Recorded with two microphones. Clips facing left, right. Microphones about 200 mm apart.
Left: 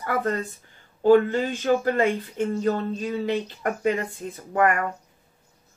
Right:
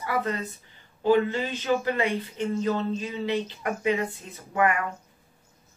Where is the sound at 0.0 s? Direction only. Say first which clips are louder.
Left 3 dB; 50° left (ahead or behind).